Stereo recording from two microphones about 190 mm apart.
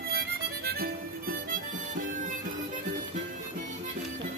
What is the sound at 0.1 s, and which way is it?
Harmonica, 55° right (ahead or behind).